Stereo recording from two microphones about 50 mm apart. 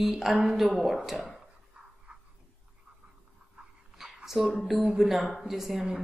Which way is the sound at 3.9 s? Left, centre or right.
Centre.